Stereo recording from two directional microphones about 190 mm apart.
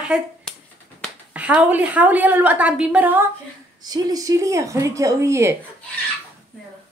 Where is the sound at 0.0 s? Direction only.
5° right (ahead or behind).